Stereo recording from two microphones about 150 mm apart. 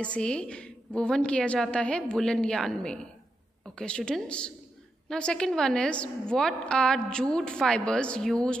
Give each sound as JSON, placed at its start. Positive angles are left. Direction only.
{"t": 0.0, "sound": "a woman's voice", "side_deg": 5}